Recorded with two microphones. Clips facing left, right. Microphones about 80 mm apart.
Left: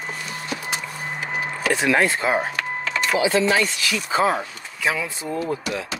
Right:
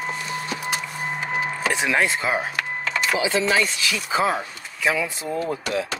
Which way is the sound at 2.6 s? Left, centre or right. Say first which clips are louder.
Even; centre.